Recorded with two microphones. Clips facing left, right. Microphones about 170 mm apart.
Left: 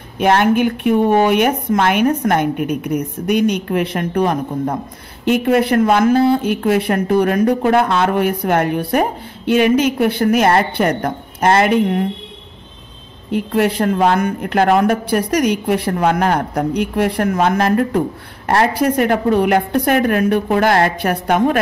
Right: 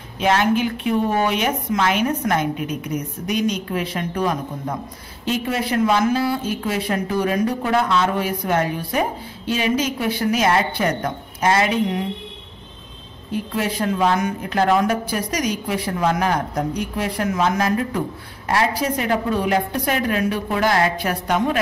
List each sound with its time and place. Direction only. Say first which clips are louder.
0.2 s speech: left 5 dB; 55° left (ahead or behind)
13.3 s speech: left 7 dB; 65° left (ahead or behind)